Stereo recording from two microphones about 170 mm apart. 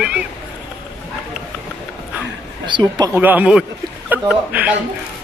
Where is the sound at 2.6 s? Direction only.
30° right (ahead or behind).